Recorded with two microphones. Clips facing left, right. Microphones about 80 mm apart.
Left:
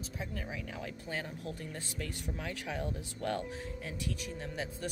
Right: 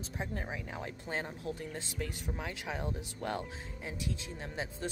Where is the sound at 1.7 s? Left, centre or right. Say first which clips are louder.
Right 1 dB; centre.